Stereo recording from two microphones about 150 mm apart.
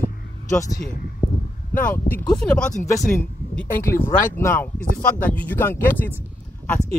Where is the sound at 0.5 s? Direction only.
25° left (ahead or behind).